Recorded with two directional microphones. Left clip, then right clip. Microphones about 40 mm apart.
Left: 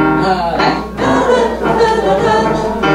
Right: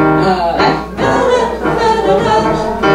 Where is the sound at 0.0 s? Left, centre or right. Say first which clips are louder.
Right 1 dB; centre.